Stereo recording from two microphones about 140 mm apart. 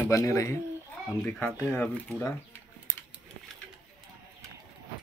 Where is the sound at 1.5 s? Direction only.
15° right (ahead or behind).